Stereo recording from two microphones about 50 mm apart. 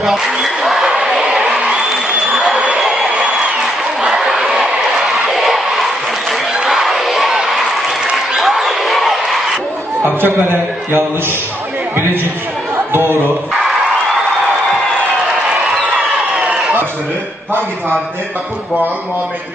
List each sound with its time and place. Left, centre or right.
0.0 s a sound: centre
6.7 s crowd: centre
8.4 s a sound: centre
10.0 s a man's voice: right
12.7 s chatter: right
13.5 s music: centre
15.6 s crowd: centre